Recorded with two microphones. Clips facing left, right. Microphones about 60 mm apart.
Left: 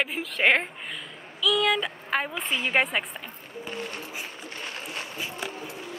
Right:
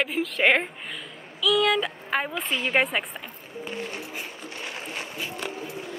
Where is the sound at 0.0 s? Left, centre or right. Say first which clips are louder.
Right 2 dB; centre.